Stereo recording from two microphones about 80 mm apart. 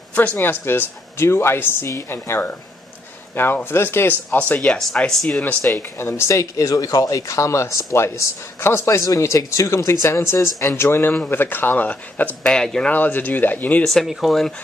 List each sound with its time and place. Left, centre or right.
0.1 s speech: centre
4.3 s speech: centre
4.7 s speech: centre
5.6 s speech: left
12.4 s speech: centre
12.9 s speech: left
13.8 s speech: centre